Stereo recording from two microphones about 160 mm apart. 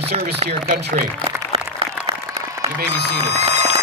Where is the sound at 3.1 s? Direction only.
45° right (ahead or behind).